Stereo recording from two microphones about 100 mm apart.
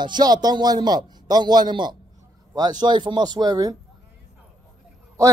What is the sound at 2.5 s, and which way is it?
Speech, 45° right (ahead or behind).